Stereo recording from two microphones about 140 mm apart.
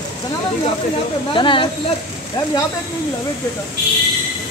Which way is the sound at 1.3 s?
35° left (ahead or behind).